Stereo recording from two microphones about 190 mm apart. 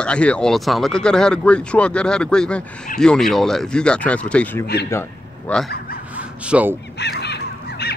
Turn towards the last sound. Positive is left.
turn(degrees=60)  # may be behind; listen again after turning